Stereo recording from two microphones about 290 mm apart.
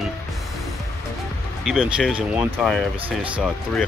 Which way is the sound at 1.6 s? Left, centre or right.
Centre.